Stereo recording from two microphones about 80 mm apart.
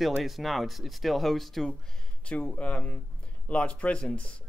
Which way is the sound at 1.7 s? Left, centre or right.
Centre.